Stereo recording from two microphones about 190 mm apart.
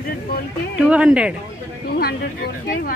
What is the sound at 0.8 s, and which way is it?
Speech, 5° right (ahead or behind).